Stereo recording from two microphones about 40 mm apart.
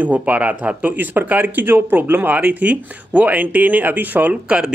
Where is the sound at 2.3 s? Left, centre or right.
Right.